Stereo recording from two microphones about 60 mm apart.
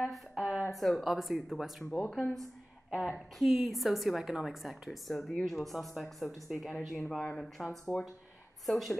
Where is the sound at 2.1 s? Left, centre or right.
Centre.